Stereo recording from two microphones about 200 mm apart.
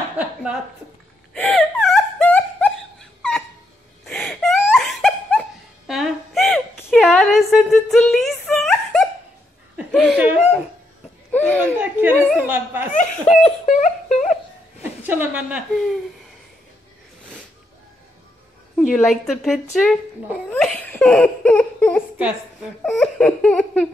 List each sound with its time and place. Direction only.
0.2 s a sound: 5° right (ahead or behind)
1.3 s wail: 5° left (ahead or behind)
3.2 s a sound: 5° left (ahead or behind)
4.0 s wail: centre (ahead or behind)
7.1 s speech: centre (ahead or behind)
11.3 s a child's voice: 10° left (ahead or behind)
11.7 s speech: 10° right (ahead or behind)
12.9 s speech: 40° left (ahead or behind)
13.7 s a sound: 35° left (ahead or behind)
14.8 s a woman's voice: 10° right (ahead or behind)
18.8 s a woman's voice: centre (ahead or behind)
20.5 s laughter: 5° left (ahead or behind)
22.8 s a woman's voice: 5° left (ahead or behind)